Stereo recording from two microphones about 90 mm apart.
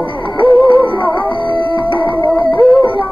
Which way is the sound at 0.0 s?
65° left (ahead or behind).